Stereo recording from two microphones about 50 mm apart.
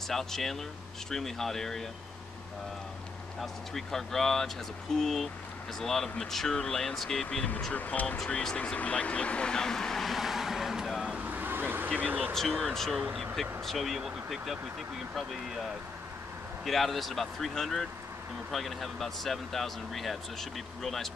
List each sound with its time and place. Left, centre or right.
0.1 s speech: centre
3.3 s speech: centre
7.7 s speech: left
8.2 s speech: centre
11.2 s vehicle: right
11.9 s speech: right
12.4 s speech: centre
16.6 s speech: centre